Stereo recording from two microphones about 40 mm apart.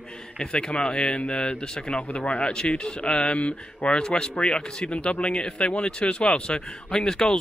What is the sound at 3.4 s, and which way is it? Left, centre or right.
Speech, left.